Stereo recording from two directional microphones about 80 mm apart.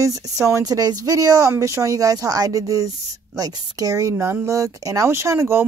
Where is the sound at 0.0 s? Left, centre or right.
Right.